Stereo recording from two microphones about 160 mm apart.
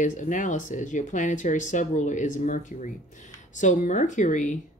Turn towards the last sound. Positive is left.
turn(degrees=50)  # may be behind; listen again after turning